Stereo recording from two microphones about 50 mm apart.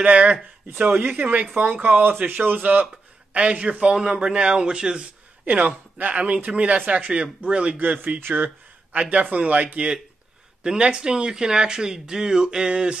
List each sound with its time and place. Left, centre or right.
0.0 s speech: right
3.3 s speech: right
5.4 s speech: right
8.2 s speech: right
8.9 s speech: right